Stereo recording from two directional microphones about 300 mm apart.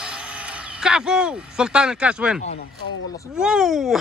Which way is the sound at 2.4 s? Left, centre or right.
Left.